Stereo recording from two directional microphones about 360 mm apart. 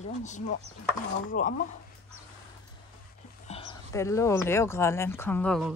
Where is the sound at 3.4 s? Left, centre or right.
Centre.